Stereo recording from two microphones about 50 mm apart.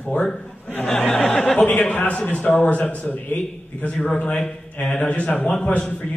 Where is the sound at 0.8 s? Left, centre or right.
Centre.